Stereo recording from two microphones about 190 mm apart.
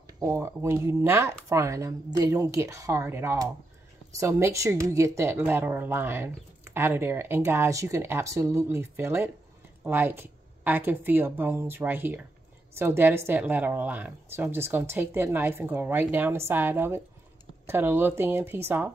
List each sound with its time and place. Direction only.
0.2 s speech: 15° right (ahead or behind)